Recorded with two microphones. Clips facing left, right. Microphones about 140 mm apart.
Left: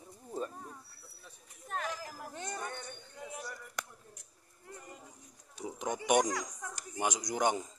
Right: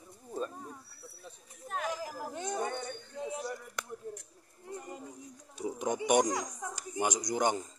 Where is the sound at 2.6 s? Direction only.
25° right (ahead or behind).